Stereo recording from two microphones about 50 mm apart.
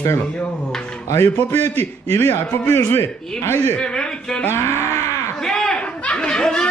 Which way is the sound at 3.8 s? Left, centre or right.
Centre.